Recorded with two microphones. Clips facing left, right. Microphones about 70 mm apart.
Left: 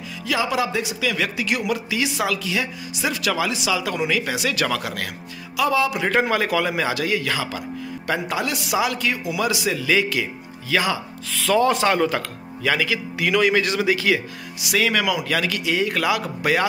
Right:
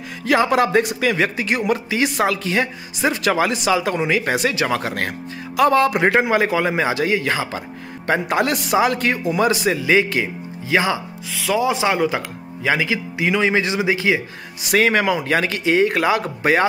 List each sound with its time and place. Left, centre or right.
0.2 s speech: right
1.1 s speech: right
4.6 s a man's voice: right
4.8 s speech: right
6.1 s a man's voice: right
8.1 s a man's voice: right
11.3 s speech: centre
12.6 s a man's voice: right
14.6 s speech: right